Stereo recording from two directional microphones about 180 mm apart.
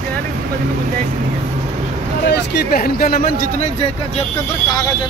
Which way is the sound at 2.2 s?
65° left (ahead or behind).